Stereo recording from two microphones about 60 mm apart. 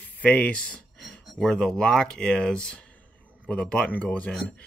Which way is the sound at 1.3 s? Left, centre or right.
Centre.